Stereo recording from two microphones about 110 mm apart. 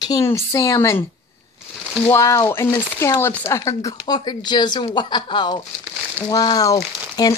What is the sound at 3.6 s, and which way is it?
Speech, 30° left (ahead or behind).